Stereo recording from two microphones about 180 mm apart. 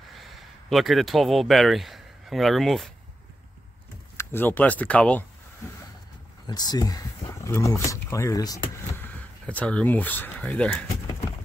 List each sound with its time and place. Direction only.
0.2 s speech: centre (ahead or behind)
4.2 s speech: 10° left (ahead or behind)
6.4 s speech: 20° left (ahead or behind)
9.1 s speech: 10° left (ahead or behind)